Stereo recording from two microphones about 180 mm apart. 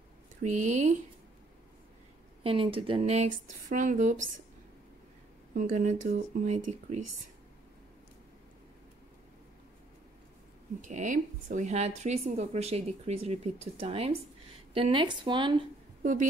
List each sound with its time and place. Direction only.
0.4 s a woman's voice: 40° right (ahead or behind)
2.4 s a woman's voice: 30° right (ahead or behind)
5.5 s a woman's voice: 50° right (ahead or behind)
10.8 s a woman's voice: 45° right (ahead or behind); by 15.6 s 25° right (ahead or behind)
16.0 s a woman's voice: 45° right (ahead or behind)